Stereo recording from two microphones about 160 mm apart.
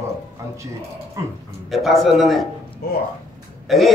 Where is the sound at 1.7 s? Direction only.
Centre (ahead or behind).